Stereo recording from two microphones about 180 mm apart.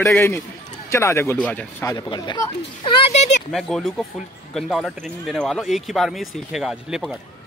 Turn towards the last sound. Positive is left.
turn(degrees=0)  # may be behind; listen again after turning